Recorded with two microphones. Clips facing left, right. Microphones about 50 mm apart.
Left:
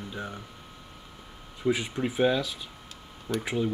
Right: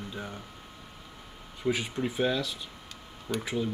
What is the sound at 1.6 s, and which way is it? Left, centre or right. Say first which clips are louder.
Speech: left 2 dB; centre.